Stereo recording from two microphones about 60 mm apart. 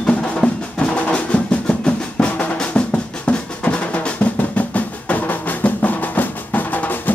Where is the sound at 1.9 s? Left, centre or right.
Centre.